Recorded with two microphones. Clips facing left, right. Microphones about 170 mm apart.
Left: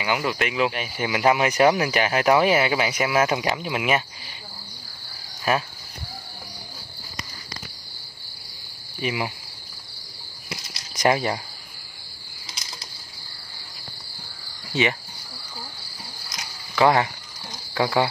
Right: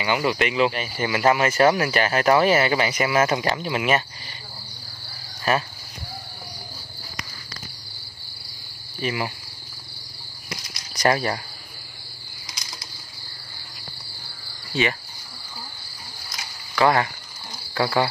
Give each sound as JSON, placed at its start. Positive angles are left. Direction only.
{"t": 0.0, "sound": "speech", "side_deg": 5}
{"t": 9.0, "sound": "speech", "side_deg": 10}
{"t": 11.1, "sound": "speech", "side_deg": 15}
{"t": 14.7, "sound": "speech", "side_deg": 20}
{"t": 16.7, "sound": "speech", "side_deg": 15}
{"t": 17.7, "sound": "cricket", "side_deg": 15}